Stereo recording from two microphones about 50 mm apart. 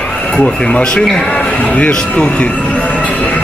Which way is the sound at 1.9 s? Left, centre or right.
Centre.